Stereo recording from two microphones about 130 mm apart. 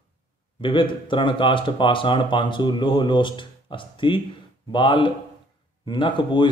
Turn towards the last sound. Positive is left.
turn(degrees=35)  # may be behind; listen again after turning